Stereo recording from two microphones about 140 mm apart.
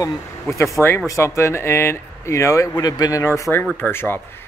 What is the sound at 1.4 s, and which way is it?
Speech, 20° left (ahead or behind).